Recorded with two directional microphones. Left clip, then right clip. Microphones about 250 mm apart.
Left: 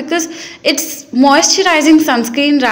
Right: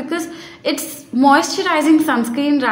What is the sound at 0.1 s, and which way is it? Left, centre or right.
A woman's voice, centre.